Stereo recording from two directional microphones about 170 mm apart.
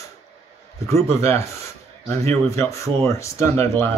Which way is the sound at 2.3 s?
15° left (ahead or behind).